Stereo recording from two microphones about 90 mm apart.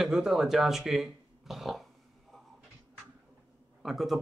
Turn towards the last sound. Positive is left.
turn(degrees=0)  # may be behind; listen again after turning